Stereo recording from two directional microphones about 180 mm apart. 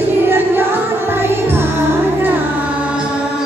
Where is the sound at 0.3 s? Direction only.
10° right (ahead or behind).